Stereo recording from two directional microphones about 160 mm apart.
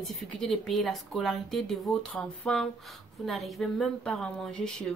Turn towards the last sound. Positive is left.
turn(degrees=5)  # may be behind; listen again after turning